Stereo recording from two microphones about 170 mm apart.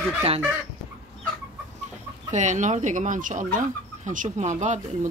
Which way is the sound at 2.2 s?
45° right (ahead or behind).